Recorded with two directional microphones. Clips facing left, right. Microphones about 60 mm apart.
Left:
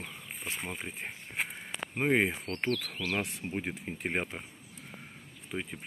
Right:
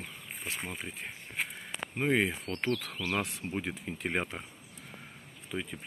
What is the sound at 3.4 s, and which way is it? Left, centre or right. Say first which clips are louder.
Speech: even; left.